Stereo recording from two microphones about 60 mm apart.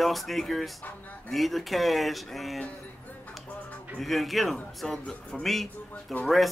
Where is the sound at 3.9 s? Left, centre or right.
Centre.